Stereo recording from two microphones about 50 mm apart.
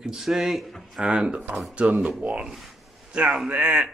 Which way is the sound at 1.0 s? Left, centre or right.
Right.